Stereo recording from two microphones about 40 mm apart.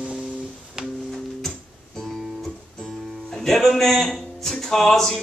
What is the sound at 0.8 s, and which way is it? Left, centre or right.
Music, centre.